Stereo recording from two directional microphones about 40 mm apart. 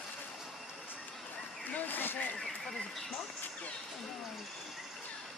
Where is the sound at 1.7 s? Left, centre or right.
Left.